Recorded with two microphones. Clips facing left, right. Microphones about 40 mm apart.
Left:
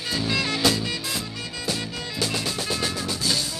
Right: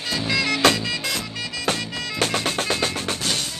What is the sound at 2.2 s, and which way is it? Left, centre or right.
Music, right.